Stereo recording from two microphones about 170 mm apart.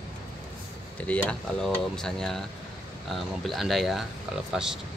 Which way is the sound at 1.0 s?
5° left (ahead or behind).